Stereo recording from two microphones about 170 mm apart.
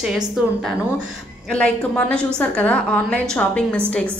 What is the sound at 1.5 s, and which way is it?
A woman's voice, 5° left (ahead or behind).